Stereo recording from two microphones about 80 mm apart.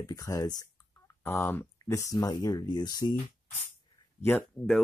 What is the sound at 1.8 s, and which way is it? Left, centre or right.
Speech, left.